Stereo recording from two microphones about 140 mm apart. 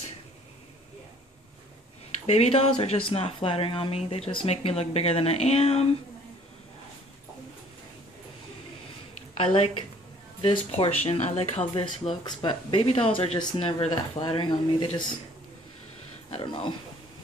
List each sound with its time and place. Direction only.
2.3 s speech: 45° left (ahead or behind)
9.4 s speech: 45° left (ahead or behind)
16.3 s speech: 40° left (ahead or behind)